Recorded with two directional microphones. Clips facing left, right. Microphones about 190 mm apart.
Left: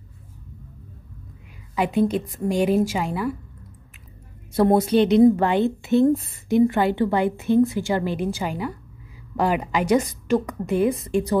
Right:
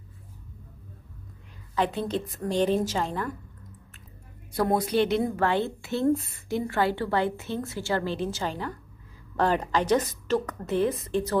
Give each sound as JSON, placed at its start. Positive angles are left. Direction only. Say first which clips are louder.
{"t": 1.8, "sound": "a woman's voice", "louder": "left 6 dB", "side_deg": 10}
{"t": 4.6, "sound": "a woman's voice", "louder": "left 6 dB", "side_deg": 25}